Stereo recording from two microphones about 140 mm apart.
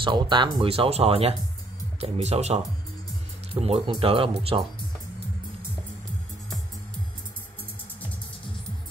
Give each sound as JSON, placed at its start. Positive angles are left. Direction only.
{"t": 0.0, "sound": "speech", "side_deg": -35}